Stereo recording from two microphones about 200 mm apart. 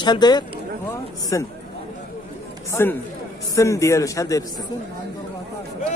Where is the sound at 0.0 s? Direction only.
20° left (ahead or behind).